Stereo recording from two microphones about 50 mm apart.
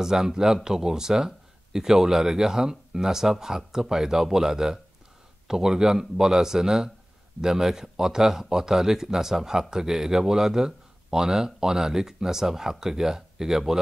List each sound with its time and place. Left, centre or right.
0.0 s a man's voice: centre